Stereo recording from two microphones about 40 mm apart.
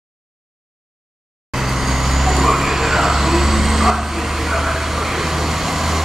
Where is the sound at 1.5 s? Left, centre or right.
Centre.